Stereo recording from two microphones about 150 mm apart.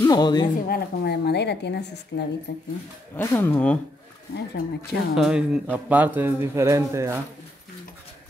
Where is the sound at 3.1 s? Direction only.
15° left (ahead or behind).